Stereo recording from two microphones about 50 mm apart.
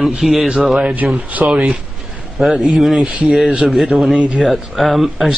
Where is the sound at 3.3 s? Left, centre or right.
Centre.